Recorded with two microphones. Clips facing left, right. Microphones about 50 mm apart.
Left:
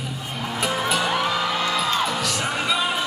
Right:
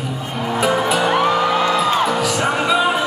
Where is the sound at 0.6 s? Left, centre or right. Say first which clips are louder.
Right 6 dB; centre.